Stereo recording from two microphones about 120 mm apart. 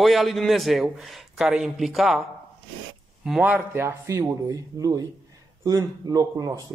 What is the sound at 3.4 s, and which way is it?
Speech, 15° right (ahead or behind).